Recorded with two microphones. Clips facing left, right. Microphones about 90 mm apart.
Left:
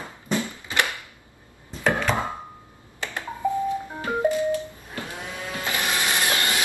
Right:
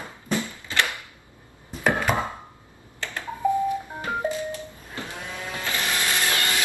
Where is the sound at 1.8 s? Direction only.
10° right (ahead or behind).